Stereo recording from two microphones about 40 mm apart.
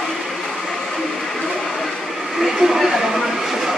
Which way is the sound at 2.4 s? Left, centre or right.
Centre.